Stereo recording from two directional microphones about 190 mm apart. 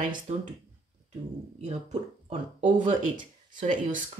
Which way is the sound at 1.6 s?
35° right (ahead or behind).